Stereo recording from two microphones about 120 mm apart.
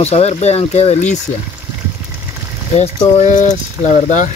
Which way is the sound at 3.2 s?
90° left.